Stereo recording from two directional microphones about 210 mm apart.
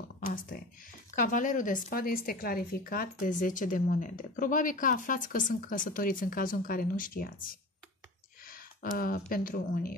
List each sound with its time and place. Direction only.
0.3 s speech: 40° left (ahead or behind)
8.5 s a sound: 45° left (ahead or behind)
9.3 s speech: 45° left (ahead or behind)